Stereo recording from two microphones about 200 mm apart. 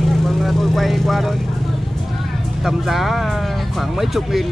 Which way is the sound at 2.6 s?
Centre (ahead or behind).